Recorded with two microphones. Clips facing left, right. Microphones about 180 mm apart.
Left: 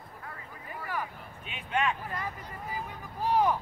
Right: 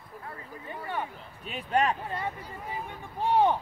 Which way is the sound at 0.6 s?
25° right (ahead or behind).